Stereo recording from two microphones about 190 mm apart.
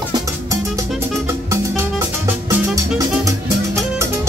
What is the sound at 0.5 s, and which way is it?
Music, 15° right (ahead or behind).